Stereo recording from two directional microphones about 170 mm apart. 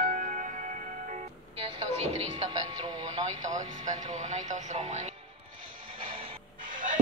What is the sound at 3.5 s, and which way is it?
Speech, 45° right (ahead or behind).